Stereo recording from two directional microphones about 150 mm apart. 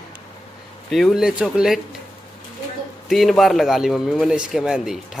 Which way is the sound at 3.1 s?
Centre (ahead or behind).